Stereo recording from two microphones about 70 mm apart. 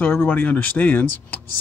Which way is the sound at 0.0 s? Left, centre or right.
Left.